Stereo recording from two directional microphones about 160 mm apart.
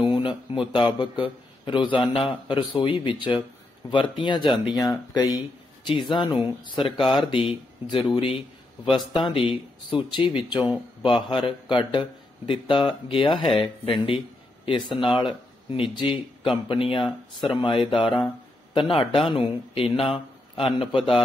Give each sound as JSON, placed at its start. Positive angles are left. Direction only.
{"t": 0.0, "sound": "a man's voice", "side_deg": 30}